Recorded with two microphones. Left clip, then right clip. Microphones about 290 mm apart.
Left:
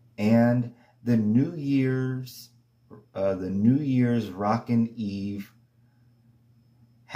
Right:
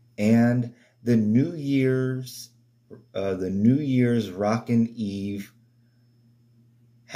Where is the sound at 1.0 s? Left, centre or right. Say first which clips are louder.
Right 2 dB; centre.